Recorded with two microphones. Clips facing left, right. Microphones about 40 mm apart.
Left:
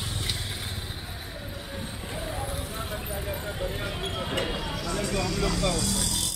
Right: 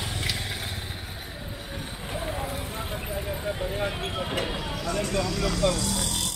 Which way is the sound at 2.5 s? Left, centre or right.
Right.